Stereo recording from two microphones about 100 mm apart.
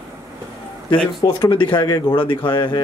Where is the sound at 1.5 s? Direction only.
20° left (ahead or behind).